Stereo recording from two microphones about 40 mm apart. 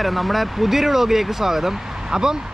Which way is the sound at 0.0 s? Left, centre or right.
Centre.